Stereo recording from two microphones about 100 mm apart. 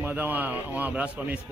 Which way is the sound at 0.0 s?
20° right (ahead or behind).